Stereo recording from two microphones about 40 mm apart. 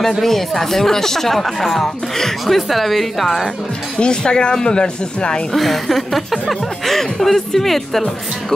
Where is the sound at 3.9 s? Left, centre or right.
Left.